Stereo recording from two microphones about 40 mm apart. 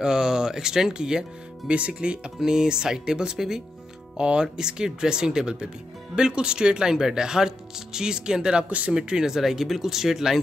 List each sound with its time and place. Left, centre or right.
0.0 s speech: centre
1.7 s speech: right
2.4 s speech: centre
4.2 s speech: right
8.6 s speech: right
8.9 s speech: centre
9.4 s speech: centre